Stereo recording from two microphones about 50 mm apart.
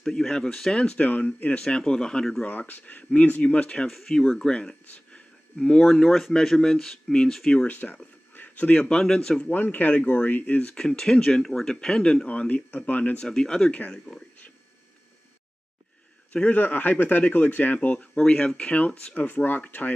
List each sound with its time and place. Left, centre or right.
0.0 s speech: centre
1.0 s speech: left
1.6 s speech: centre
2.4 s speech: left
3.8 s speech: centre
7.6 s speech: left
8.9 s speech: centre
9.5 s speech: left
10.7 s speech: centre; by 13.2 s left
13.3 s speech: centre
13.7 s speech: left
13.9 s speech: centre
16.4 s speech: left
19.1 s speech: left